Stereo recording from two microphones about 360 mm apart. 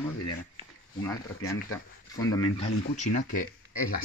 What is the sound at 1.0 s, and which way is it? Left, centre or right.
Speech, centre.